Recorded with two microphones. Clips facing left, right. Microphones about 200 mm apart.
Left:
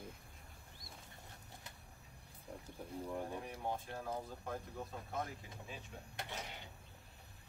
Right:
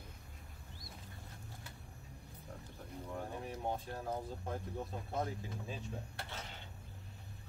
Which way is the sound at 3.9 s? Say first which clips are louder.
Right 2 dB; 30° right (ahead or behind).